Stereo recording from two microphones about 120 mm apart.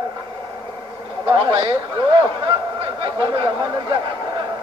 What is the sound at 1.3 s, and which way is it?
Speech, 40° right (ahead or behind).